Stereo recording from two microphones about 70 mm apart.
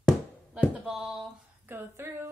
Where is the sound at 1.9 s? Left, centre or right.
Right.